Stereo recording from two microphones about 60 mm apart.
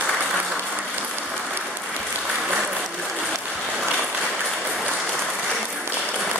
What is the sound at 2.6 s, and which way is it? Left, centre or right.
Applause, centre.